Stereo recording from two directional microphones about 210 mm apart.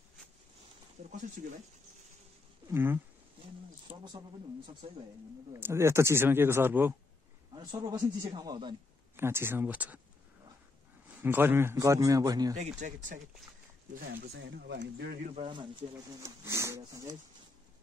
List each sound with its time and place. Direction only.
2.7 s a man's voice: 10° right (ahead or behind)
5.5 s a man's voice: 10° right (ahead or behind)
11.1 s a man's voice: 10° right (ahead or behind)
12.5 s speech: 35° right (ahead or behind)
14.3 s speech: 60° right (ahead or behind)
15.3 s a man's voice: 20° right (ahead or behind)